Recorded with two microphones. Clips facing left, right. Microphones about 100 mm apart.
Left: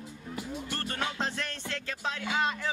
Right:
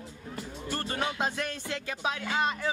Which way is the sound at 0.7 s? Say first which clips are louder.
Right 4 dB; 5° right (ahead or behind).